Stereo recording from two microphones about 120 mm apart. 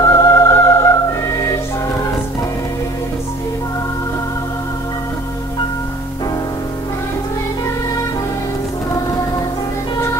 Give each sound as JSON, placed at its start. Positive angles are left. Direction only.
{"t": 0.1, "sound": "music", "side_deg": 25}